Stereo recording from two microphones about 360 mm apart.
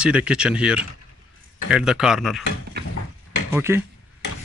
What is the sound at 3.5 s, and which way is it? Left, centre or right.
Speech, centre.